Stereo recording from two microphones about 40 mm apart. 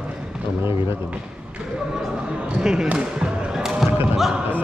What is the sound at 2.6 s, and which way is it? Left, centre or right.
Speech, centre.